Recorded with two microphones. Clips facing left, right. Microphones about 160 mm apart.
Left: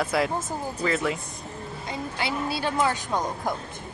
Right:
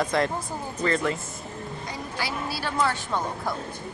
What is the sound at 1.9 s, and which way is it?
A woman's voice, 25° left (ahead or behind).